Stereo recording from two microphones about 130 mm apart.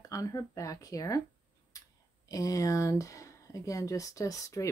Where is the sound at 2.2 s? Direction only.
25° left (ahead or behind).